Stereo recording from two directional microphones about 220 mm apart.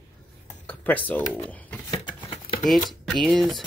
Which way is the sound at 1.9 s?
20° left (ahead or behind).